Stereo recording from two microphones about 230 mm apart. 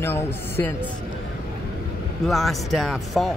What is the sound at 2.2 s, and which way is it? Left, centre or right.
Speech, centre.